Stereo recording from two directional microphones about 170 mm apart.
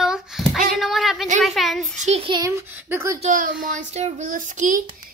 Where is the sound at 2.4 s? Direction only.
15° right (ahead or behind).